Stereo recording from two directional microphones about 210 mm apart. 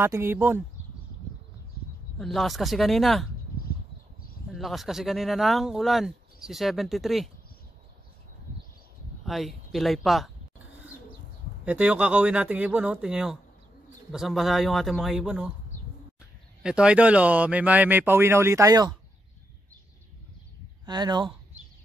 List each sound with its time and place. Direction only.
0.0 s speech: 10° right (ahead or behind)
2.1 s speech: centre (ahead or behind)
4.5 s speech: centre (ahead or behind)
9.2 s speech: centre (ahead or behind)
11.6 s speech: 5° right (ahead or behind)
16.6 s speech: 5° right (ahead or behind)
20.8 s speech: 20° right (ahead or behind)